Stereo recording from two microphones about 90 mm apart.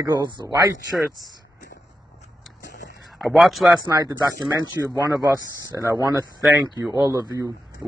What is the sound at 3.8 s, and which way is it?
Speech, 45° right (ahead or behind).